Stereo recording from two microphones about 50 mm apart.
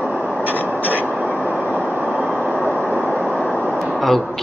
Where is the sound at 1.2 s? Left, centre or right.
Centre.